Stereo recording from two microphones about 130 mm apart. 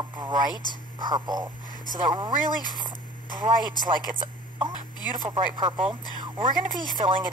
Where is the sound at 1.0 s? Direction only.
35° right (ahead or behind).